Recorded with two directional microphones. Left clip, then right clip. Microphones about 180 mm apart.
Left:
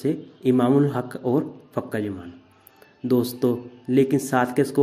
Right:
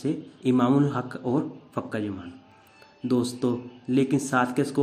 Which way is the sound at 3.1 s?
15° left (ahead or behind).